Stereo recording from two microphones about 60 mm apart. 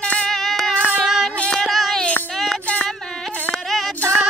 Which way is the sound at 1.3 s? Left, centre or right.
Centre.